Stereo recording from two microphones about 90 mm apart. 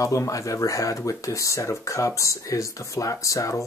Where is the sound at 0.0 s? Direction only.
35° left (ahead or behind).